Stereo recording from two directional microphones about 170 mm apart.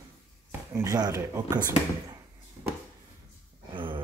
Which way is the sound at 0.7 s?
20° right (ahead or behind).